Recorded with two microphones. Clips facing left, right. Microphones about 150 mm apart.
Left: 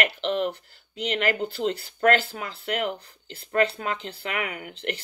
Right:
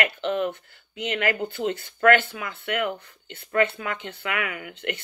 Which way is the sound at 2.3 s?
30° left (ahead or behind).